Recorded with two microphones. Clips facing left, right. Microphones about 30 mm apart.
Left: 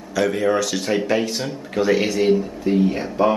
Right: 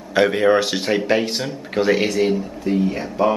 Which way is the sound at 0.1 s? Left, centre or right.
Right.